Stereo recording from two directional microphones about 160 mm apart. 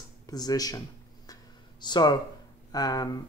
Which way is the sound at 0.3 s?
25° left (ahead or behind).